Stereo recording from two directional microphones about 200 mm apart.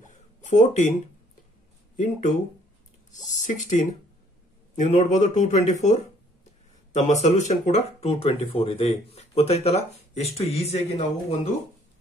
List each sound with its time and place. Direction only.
0.0 s a sound: 40° left (ahead or behind)
3.3 s speech: 40° left (ahead or behind)
4.7 s speech: 35° left (ahead or behind)